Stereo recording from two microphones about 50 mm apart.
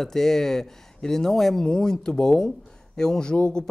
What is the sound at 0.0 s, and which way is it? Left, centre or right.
Speech, centre.